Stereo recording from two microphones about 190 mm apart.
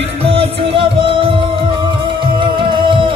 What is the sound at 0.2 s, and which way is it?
Music, 30° right (ahead or behind).